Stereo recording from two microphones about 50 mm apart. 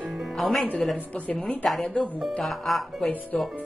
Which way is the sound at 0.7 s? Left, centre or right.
Left.